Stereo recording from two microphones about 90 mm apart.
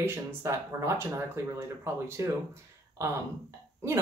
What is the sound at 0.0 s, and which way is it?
Speech, 30° right (ahead or behind).